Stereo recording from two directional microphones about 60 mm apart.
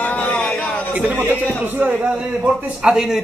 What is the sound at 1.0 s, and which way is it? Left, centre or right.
Speech, right.